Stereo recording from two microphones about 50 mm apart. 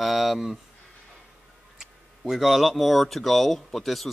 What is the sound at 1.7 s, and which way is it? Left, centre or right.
Speech, centre.